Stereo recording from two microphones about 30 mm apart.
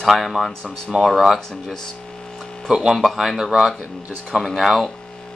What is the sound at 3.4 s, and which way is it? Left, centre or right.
Speech, centre.